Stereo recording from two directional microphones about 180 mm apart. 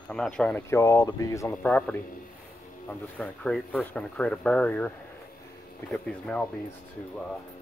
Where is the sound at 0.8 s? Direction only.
20° left (ahead or behind).